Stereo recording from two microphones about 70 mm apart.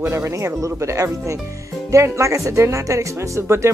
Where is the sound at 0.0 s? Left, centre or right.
Right.